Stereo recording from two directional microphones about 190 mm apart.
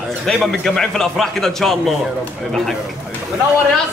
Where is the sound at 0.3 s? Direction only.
Centre (ahead or behind).